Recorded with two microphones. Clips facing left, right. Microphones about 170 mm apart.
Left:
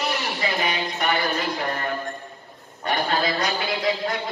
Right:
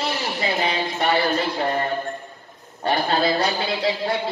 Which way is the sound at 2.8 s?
30° right (ahead or behind).